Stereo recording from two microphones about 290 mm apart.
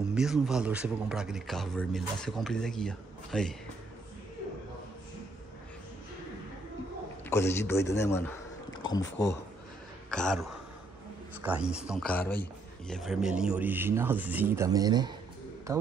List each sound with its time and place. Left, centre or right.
0.0 s a man's voice: centre
7.2 s a man's voice: centre
9.0 s speech: left
10.1 s a man's voice: centre
11.4 s a man's voice: centre